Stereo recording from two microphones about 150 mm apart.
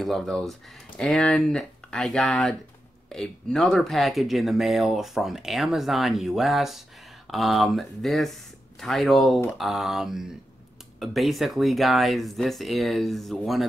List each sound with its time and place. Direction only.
0.0 s speech: centre (ahead or behind)